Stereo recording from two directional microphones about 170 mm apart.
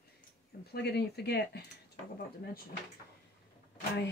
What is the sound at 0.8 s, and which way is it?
Speech, 75° left (ahead or behind).